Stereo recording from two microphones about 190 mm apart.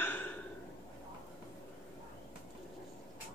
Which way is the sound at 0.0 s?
10° left (ahead or behind).